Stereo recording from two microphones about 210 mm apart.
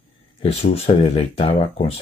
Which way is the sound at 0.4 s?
30° left (ahead or behind).